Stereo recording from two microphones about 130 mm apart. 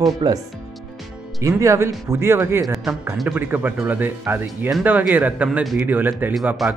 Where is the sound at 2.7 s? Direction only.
Centre (ahead or behind).